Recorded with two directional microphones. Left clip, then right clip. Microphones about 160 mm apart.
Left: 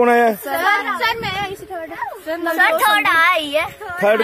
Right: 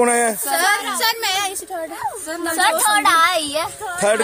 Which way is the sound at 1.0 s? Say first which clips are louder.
Right 1 dB; 90° right.